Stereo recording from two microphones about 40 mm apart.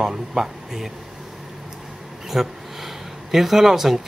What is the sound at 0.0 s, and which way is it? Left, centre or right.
Speech, centre.